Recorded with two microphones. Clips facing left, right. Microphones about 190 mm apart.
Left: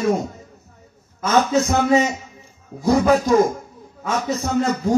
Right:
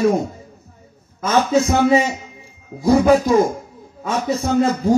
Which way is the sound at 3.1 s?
30° right (ahead or behind).